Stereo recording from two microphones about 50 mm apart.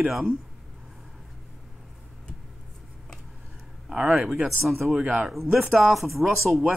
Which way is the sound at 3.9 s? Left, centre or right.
Centre.